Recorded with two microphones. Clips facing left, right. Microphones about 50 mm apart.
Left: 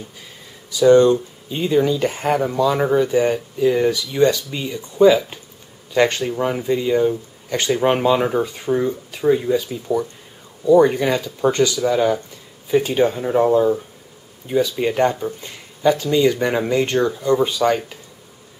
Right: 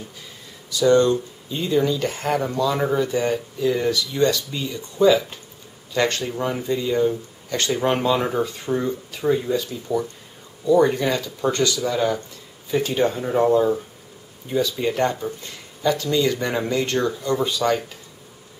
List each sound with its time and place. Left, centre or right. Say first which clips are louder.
0.7 s speech: left 5 dB; centre
14.5 s speech: left 3 dB; centre